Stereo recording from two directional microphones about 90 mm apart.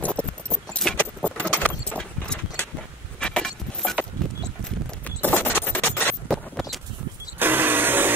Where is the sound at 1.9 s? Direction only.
10° left (ahead or behind).